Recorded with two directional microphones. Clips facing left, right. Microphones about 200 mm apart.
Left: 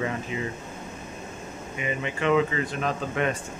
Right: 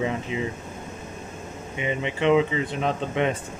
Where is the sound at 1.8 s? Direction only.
25° right (ahead or behind).